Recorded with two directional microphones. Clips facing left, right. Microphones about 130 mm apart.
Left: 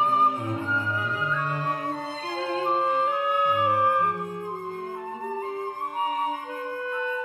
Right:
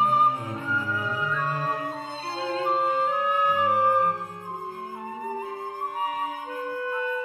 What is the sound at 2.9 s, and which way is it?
Music, 20° left (ahead or behind).